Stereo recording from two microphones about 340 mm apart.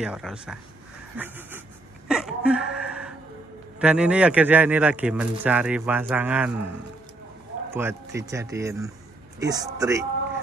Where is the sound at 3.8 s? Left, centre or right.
Centre.